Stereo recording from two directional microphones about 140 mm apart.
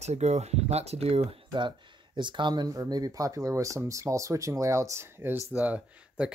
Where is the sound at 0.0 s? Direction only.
55° right (ahead or behind).